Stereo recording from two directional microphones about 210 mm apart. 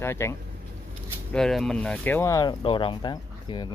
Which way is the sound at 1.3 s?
Centre (ahead or behind).